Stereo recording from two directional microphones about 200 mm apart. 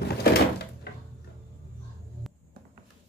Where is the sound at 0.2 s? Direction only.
55° left (ahead or behind).